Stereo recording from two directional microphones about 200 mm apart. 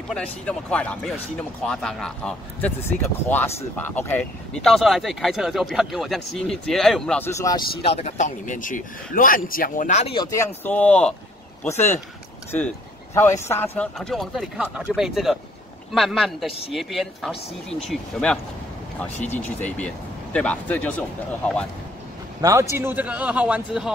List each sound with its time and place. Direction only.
0.1 s speech: 5° left (ahead or behind)
7.8 s a man's voice: 35° left (ahead or behind)
10.6 s speech: 5° left (ahead or behind)
12.4 s speech: 10° left (ahead or behind)
22.4 s a man's voice: 15° right (ahead or behind)